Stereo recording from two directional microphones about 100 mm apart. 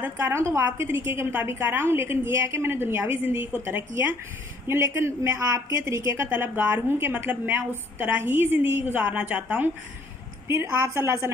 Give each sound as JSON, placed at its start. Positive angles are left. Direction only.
{"t": 0.0, "sound": "a woman's voice", "side_deg": -25}
{"t": 10.5, "sound": "a woman's voice", "side_deg": -25}